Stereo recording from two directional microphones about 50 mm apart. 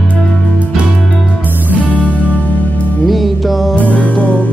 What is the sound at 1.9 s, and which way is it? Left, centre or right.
Music, left.